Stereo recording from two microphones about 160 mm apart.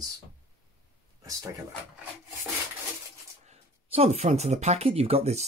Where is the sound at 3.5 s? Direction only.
40° right (ahead or behind).